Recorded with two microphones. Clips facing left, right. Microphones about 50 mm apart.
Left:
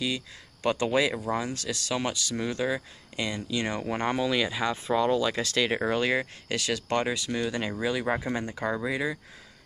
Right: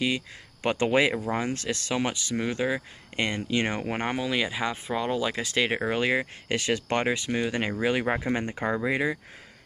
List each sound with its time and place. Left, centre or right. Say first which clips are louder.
0.0 s speech: right 3 dB; right
3.2 s speech: right 3 dB; right